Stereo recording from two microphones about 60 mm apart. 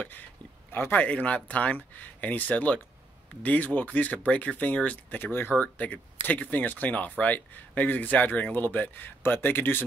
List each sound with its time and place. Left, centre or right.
0.7 s speech: left
1.0 s speech: left
5.2 s speech: left